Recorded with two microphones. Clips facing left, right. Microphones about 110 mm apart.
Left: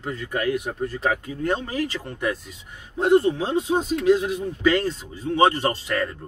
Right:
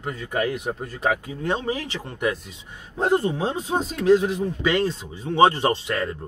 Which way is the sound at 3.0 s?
40° right (ahead or behind).